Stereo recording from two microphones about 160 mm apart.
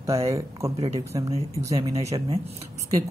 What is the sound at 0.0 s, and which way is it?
Speech, 20° right (ahead or behind).